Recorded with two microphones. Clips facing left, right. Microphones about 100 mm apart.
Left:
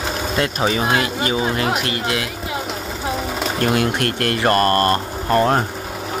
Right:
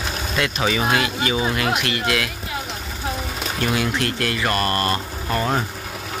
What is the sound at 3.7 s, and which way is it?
Speech, 50° left (ahead or behind).